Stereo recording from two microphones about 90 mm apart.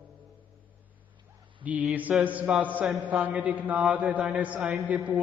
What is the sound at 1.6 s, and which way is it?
A man's voice, 15° right (ahead or behind).